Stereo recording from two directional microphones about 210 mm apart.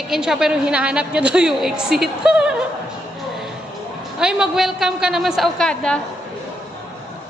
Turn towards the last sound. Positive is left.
turn(degrees=5)  # may be behind; listen again after turning